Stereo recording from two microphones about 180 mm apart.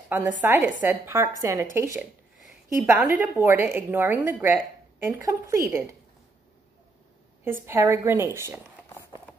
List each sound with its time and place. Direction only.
0.4 s a woman's voice: 10° right (ahead or behind)
7.4 s a woman's voice: 10° right (ahead or behind)